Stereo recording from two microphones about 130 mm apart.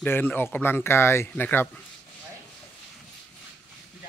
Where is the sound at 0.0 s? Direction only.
15° left (ahead or behind).